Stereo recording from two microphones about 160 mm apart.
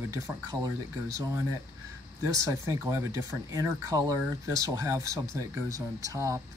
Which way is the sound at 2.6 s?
15° right (ahead or behind).